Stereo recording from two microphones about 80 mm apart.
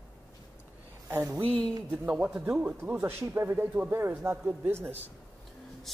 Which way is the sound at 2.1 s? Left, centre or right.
Centre.